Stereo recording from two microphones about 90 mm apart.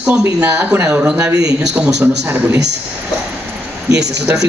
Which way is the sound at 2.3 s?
25° right (ahead or behind).